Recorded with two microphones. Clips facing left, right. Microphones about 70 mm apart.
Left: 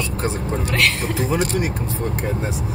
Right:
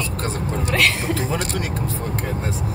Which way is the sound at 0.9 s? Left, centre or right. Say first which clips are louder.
Right 1 dB; centre.